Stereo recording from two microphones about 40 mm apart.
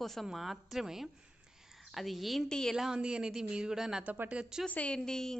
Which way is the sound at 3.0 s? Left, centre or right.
Right.